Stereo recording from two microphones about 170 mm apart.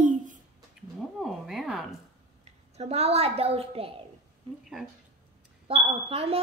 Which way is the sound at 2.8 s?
35° right (ahead or behind).